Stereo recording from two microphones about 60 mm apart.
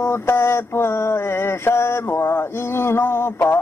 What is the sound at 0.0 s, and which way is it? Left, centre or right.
Mantra, left.